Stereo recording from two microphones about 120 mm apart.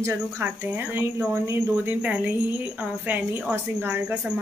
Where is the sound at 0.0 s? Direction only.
20° right (ahead or behind).